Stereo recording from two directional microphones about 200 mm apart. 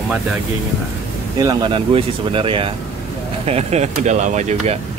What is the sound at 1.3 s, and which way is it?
Speech, 20° right (ahead or behind).